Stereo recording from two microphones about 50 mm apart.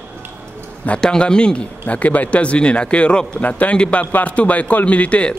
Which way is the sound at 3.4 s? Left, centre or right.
Left.